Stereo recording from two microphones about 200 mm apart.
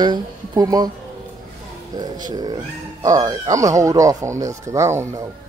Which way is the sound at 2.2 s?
20° right (ahead or behind).